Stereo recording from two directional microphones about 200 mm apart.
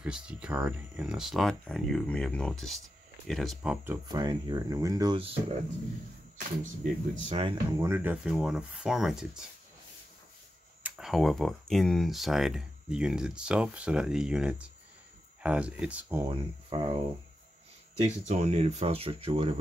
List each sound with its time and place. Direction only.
0.0 s speech: 5° right (ahead or behind); by 5.6 s 30° right (ahead or behind)
6.6 s speech: 35° right (ahead or behind)
7.5 s speech: 15° right (ahead or behind)
10.8 s speech: centre (ahead or behind)
16.3 s speech: 25° right (ahead or behind)
18.0 s speech: 35° right (ahead or behind)